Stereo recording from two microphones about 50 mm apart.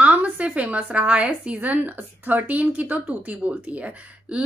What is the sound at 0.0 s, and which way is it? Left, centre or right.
A woman's voice, right.